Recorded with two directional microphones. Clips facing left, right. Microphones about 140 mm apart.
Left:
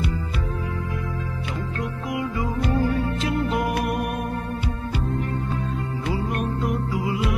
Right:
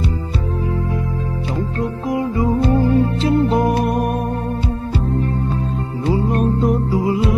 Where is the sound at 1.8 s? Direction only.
30° right (ahead or behind).